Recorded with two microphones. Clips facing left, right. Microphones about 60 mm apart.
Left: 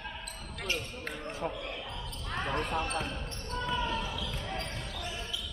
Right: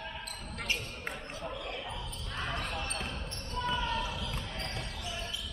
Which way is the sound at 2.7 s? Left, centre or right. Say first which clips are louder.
Left 5 dB; left.